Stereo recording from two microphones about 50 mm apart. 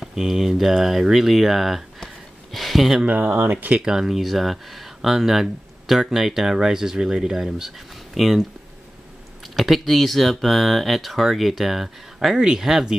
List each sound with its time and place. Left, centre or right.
0.1 s speech: centre
2.0 s a sound: centre
3.1 s speech: right
3.3 s speech: right
3.8 s speech: centre
9.6 s speech: centre